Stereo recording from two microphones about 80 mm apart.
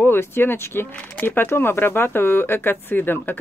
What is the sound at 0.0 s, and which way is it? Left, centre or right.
Speech, left.